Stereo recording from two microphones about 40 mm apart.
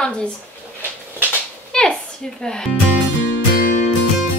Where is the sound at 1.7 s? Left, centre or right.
Centre.